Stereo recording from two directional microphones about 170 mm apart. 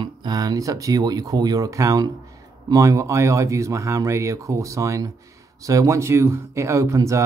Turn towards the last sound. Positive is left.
turn(degrees=-15)  # may be behind; listen again after turning